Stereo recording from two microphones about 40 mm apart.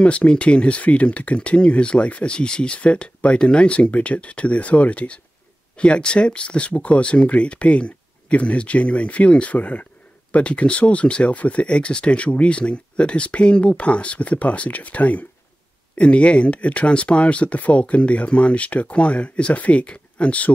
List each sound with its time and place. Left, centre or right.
0.0 s speech: left
2.8 s speech: left